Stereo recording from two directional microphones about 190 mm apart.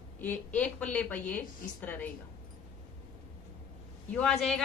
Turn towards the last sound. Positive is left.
turn(degrees=0)  # may be behind; listen again after turning